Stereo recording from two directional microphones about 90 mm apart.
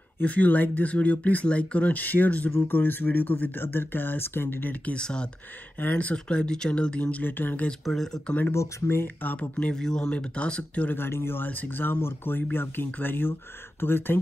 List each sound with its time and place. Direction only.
0.2 s speech: 15° left (ahead or behind)
7.8 s speech: 5° left (ahead or behind)
8.4 s speech: 25° left (ahead or behind)